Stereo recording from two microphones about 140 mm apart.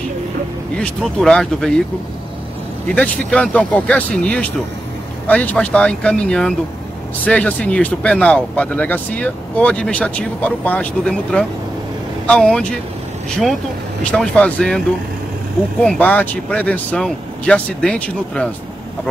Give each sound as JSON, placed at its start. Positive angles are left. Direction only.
{"t": 0.7, "sound": "speech", "side_deg": 5}
{"t": 2.9, "sound": "speech", "side_deg": 5}
{"t": 14.1, "sound": "speech", "side_deg": 5}
{"t": 15.8, "sound": "speech", "side_deg": 5}